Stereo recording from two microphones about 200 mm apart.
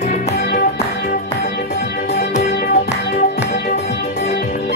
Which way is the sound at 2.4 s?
45° left (ahead or behind).